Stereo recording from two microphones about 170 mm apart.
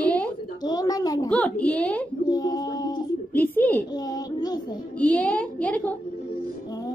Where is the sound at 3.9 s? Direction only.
25° left (ahead or behind).